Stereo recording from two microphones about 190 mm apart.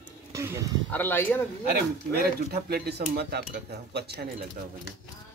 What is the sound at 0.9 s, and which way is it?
Speech, 10° left (ahead or behind).